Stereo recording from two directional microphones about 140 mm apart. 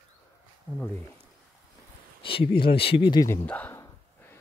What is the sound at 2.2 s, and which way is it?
Speech, 40° left (ahead or behind).